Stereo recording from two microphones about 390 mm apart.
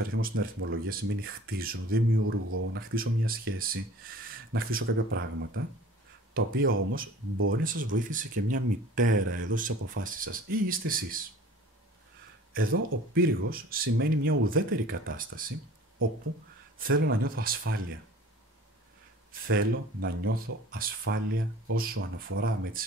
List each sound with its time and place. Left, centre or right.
0.1 s speech: right
9.7 s speech: right
12.5 s speech: right
16.7 s speech: right
19.4 s speech: right